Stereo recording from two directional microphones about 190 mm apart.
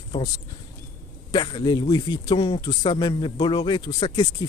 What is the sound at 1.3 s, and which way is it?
Speech, 25° left (ahead or behind).